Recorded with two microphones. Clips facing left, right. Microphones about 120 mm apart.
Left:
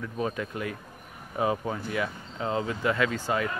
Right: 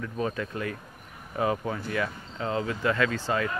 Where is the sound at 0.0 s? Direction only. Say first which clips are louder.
Even; 15° left (ahead or behind).